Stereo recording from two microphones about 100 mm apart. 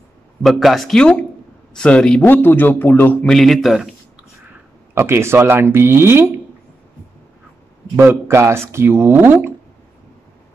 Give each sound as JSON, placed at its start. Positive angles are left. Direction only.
{"t": 0.4, "sound": "a man's voice", "side_deg": 0}
{"t": 2.2, "sound": "a man's voice", "side_deg": 20}
{"t": 3.3, "sound": "a man's voice", "side_deg": 5}
{"t": 4.9, "sound": "speech", "side_deg": -25}
{"t": 7.9, "sound": "speech", "side_deg": -25}